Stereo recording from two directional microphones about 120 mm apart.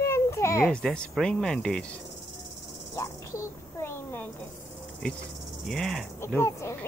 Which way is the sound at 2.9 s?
20° left (ahead or behind).